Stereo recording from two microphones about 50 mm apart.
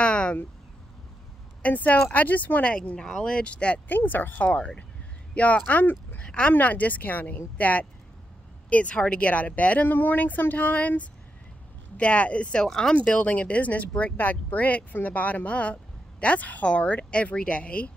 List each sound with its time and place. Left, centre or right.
0.0 s a sound: left
1.6 s speech: left
2.6 s speech: left
3.9 s speech: left
4.5 s speech: left
6.2 s speech: centre
6.5 s speech: left
12.6 s speech: centre
12.9 s speech: left